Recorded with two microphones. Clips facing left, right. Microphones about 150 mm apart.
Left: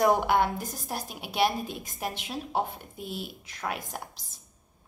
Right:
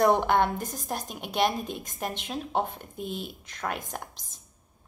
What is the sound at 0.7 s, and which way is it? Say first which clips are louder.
A woman's voice: right 2 dB; 5° left (ahead or behind).